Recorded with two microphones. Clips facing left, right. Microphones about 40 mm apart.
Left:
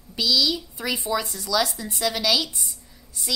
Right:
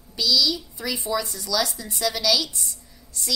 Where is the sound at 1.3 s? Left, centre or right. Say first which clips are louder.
Left 2 dB; centre.